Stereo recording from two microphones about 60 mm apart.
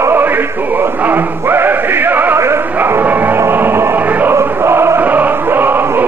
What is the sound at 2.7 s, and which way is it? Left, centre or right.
Music, right.